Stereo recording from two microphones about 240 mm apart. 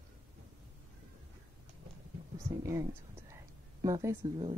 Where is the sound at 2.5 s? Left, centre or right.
Centre.